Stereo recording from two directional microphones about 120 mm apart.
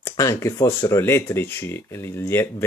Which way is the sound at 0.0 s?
25° left (ahead or behind).